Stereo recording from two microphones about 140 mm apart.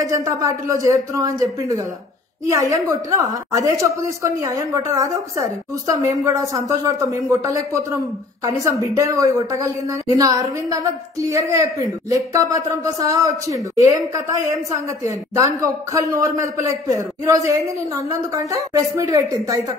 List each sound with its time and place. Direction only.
0.0 s a woman's voice: 25° right (ahead or behind)
2.5 s a woman's voice: 25° right (ahead or behind)